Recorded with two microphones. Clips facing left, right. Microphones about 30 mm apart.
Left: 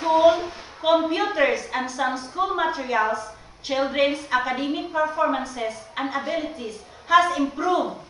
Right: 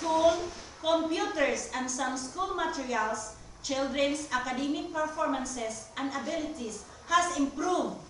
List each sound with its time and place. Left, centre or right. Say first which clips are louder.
0.0 s a woman's voice: left 8 dB; left